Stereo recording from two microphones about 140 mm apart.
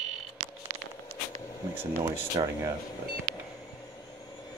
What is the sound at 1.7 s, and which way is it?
Speech, 15° right (ahead or behind).